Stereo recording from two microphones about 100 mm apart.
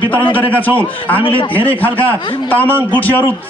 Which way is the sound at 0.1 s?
15° left (ahead or behind).